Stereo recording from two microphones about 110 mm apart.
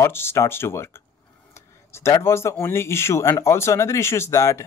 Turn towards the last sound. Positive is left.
turn(degrees=30)  # may be behind; listen again after turning